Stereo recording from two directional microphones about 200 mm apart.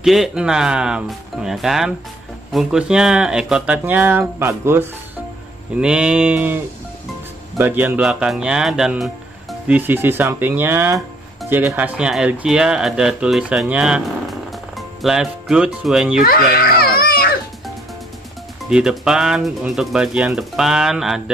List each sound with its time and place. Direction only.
0.0 s speech: centre (ahead or behind)
16.2 s baby cry: 50° left (ahead or behind)
18.6 s speech: 5° right (ahead or behind)